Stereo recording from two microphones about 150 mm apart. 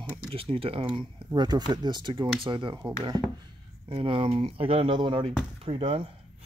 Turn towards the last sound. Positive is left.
turn(degrees=-40)  # may be behind; listen again after turning